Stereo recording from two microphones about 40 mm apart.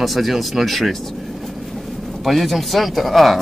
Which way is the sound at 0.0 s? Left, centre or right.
Centre.